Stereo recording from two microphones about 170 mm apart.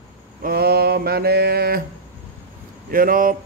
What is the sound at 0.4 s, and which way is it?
Mantra, 65° right (ahead or behind).